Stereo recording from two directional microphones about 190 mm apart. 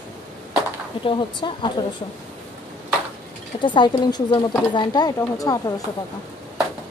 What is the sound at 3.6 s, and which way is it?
Speech, 25° left (ahead or behind).